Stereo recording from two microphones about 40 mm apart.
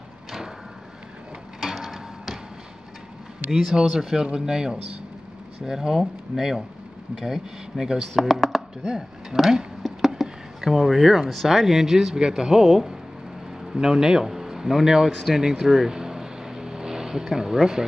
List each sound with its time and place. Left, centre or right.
1.6 s mechanisms: centre
3.8 s speech: centre
4.2 s speech: centre
8.1 s speech: centre
9.8 s a sound: centre
10.6 s speech: centre
15.4 s vehicle: centre